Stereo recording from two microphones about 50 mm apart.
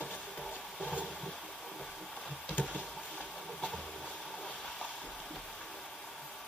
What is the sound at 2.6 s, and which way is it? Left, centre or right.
Vehicle, left.